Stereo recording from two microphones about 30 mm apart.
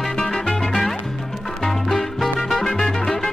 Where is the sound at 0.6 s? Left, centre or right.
Centre.